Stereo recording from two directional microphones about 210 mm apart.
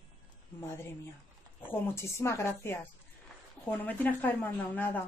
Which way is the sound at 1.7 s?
10° left (ahead or behind).